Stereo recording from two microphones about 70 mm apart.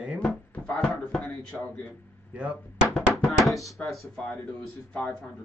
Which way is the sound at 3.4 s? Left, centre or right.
Centre.